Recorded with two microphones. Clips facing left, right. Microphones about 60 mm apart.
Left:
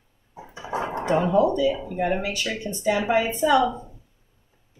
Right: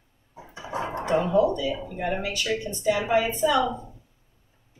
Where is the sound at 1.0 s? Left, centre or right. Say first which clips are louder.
Left 1 dB; left.